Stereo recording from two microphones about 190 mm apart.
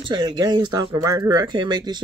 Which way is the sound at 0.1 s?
20° right (ahead or behind).